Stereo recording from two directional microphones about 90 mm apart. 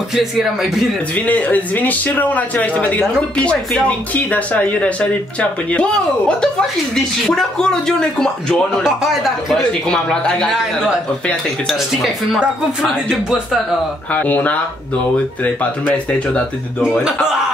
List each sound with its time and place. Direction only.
0.1 s speech: 5° right (ahead or behind)
1.1 s a man's voice: 15° left (ahead or behind)
8.8 s speech: 5° right (ahead or behind)
9.6 s a man's voice: 10° left (ahead or behind)
10.6 s speech: 10° right (ahead or behind)
14.1 s a man's voice: 15° left (ahead or behind)
16.8 s speech: 5° right (ahead or behind)